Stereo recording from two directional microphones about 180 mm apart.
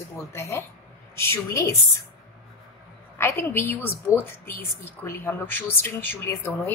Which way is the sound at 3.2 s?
15° left (ahead or behind).